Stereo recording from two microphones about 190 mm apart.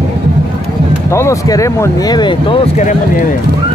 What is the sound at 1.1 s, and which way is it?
Speech, 15° left (ahead or behind).